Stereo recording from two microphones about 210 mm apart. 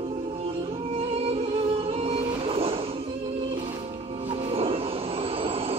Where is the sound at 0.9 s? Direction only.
25° right (ahead or behind).